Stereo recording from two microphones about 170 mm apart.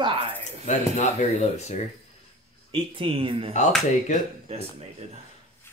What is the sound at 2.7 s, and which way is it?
Speech, 30° right (ahead or behind).